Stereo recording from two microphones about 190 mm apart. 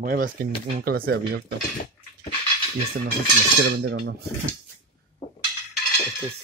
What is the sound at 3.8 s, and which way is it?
Dishes, 55° right (ahead or behind).